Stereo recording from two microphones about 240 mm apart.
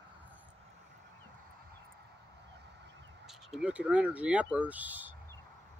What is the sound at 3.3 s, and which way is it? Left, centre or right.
Speech, centre.